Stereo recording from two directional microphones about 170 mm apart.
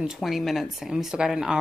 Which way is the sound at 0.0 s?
Centre (ahead or behind).